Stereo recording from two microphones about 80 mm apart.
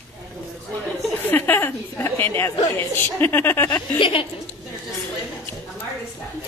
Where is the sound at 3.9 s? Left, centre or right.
Left.